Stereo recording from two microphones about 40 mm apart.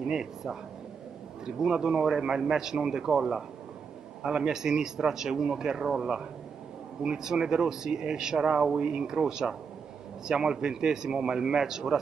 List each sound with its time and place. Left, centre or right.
0.0 s speech: centre